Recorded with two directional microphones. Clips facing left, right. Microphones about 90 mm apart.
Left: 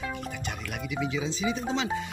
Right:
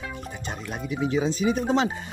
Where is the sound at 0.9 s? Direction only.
45° right (ahead or behind).